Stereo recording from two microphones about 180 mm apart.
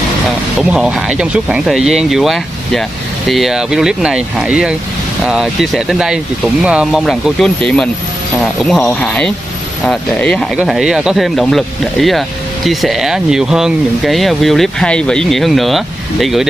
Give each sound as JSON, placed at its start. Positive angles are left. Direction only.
{"t": 0.6, "sound": "speech", "side_deg": -5}